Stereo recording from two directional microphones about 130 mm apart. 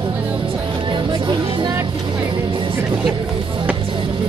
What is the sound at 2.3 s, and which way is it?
Vehicle, 40° right (ahead or behind).